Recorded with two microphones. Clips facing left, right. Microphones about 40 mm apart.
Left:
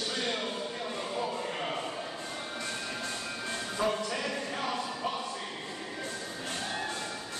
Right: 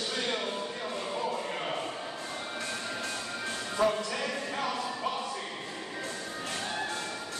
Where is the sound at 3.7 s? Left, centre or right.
Right.